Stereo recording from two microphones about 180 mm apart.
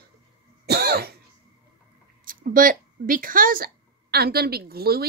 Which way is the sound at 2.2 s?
50° right (ahead or behind).